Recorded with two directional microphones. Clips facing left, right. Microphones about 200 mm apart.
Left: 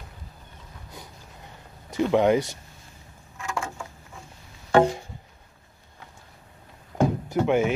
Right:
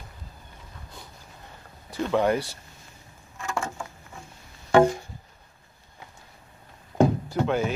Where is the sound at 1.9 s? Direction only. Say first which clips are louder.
Left 3 dB; 20° left (ahead or behind).